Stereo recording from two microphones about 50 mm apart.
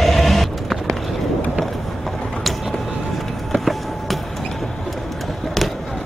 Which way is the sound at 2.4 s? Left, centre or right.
Centre.